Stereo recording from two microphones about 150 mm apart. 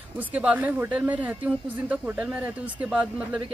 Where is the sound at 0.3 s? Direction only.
10° right (ahead or behind).